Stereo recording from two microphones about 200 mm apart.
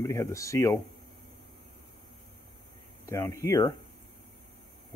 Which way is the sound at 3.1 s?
15° left (ahead or behind).